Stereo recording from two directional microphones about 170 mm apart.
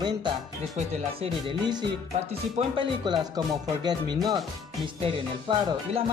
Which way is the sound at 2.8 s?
25° right (ahead or behind).